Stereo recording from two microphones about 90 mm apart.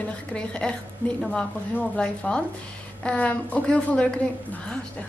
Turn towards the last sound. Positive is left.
turn(degrees=10)  # may be behind; listen again after turning